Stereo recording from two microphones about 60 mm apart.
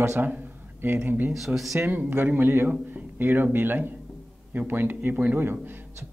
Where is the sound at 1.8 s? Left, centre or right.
Right.